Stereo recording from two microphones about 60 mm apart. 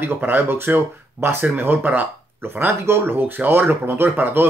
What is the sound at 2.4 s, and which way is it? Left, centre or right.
Speech, right.